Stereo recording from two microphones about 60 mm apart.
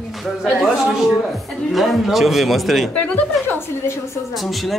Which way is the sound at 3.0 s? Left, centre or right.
Left.